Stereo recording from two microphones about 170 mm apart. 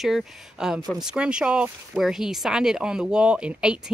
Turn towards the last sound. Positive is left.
turn(degrees=-5)  # may be behind; listen again after turning